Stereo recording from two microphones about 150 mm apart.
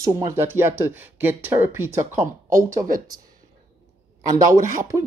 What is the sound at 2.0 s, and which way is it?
Speech, 55° right (ahead or behind).